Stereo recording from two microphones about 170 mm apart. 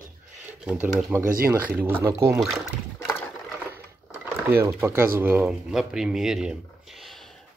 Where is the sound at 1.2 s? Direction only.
60° right (ahead or behind).